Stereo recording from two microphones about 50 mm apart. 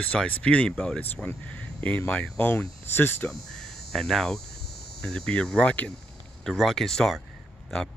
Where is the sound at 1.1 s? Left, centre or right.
Left.